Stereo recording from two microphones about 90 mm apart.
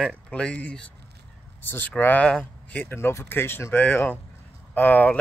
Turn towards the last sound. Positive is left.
turn(degrees=15)  # may be behind; listen again after turning